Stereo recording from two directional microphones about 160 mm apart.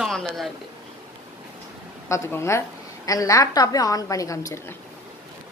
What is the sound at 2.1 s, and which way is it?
A woman's voice, 15° left (ahead or behind).